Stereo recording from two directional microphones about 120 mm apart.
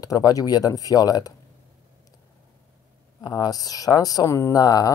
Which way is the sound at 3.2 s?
30° left (ahead or behind).